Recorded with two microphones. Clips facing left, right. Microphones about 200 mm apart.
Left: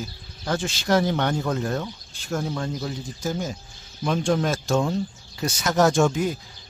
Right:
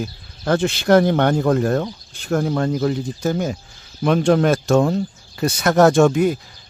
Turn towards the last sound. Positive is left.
turn(degrees=-60)  # may be behind; listen again after turning